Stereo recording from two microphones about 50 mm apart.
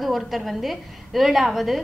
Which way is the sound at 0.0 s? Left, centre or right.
Centre.